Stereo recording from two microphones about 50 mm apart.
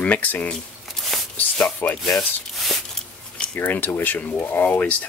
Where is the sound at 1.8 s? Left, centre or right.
Left.